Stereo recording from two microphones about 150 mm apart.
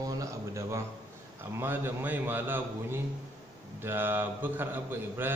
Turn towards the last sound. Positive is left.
turn(degrees=-15)  # may be behind; listen again after turning